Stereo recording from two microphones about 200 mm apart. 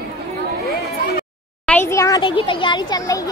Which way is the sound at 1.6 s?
10° left (ahead or behind).